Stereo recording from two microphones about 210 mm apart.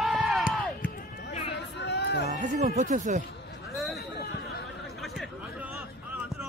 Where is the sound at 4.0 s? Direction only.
50° left (ahead or behind).